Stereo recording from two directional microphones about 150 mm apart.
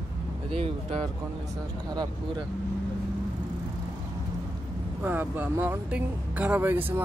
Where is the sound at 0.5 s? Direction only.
40° right (ahead or behind).